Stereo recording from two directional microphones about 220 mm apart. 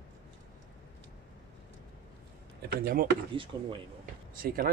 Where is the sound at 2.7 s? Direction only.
40° right (ahead or behind).